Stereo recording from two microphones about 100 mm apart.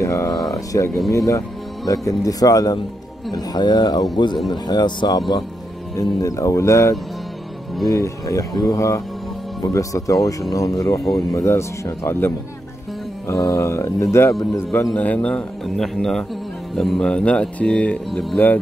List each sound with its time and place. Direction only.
0.0 s a sound: 30° left (ahead or behind)
1.1 s speech: 30° left (ahead or behind)
5.9 s speech: 35° left (ahead or behind); by 15.4 s 15° left (ahead or behind)
15.6 s speech: centre (ahead or behind)